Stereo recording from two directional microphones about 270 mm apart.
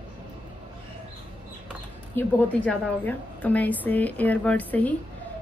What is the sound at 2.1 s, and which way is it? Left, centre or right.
A woman's voice, centre.